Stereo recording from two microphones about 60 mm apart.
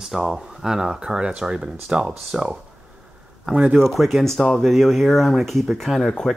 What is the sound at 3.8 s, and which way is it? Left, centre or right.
Speech, centre.